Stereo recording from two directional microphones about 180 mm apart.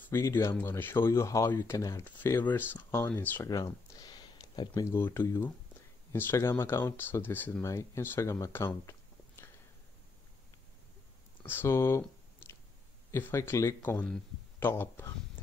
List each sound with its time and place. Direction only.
0.0 s speech: 15° left (ahead or behind)
11.4 s a sound: 15° left (ahead or behind)
13.1 s speech: 15° left (ahead or behind)